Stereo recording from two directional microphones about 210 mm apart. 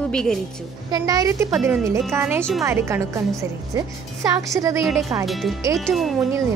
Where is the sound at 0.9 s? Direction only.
15° right (ahead or behind).